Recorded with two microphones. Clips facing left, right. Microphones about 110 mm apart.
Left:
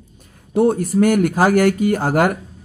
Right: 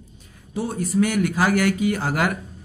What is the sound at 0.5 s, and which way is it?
Speech, 55° left (ahead or behind).